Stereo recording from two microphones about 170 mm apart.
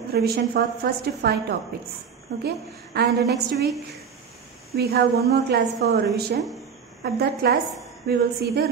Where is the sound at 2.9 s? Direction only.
80° right.